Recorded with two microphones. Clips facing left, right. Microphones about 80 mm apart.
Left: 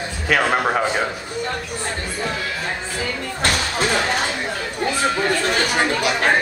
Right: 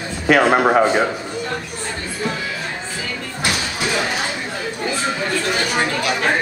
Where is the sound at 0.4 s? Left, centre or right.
Centre.